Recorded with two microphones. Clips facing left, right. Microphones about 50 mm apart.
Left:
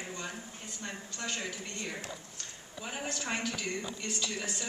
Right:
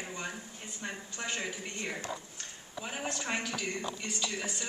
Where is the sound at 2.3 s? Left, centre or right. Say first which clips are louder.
Right 2 dB; centre.